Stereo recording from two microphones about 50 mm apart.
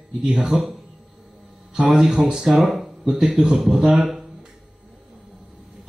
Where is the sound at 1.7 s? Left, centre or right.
Right.